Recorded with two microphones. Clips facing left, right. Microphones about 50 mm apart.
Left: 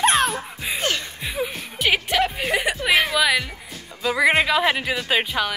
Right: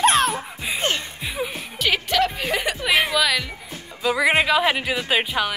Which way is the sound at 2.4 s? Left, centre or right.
Centre.